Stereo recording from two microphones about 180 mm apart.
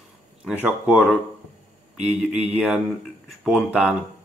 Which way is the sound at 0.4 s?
5° right (ahead or behind).